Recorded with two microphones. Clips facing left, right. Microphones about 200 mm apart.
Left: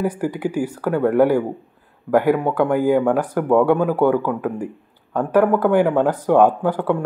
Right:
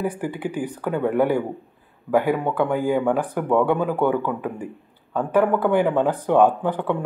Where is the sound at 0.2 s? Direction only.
10° left (ahead or behind).